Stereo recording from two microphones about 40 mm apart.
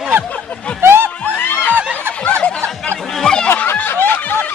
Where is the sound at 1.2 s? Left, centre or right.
Left.